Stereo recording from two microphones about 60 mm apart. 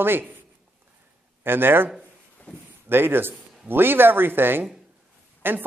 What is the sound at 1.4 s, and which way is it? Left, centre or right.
Speech, right.